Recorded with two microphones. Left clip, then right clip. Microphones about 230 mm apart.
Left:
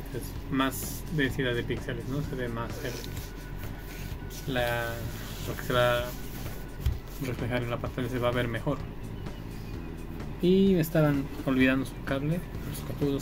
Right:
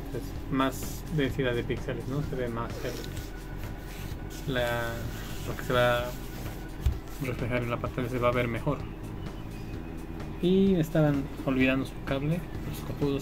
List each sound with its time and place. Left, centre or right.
0.5 s speech: centre
4.5 s speech: centre
7.2 s speech: centre
10.8 s speech: centre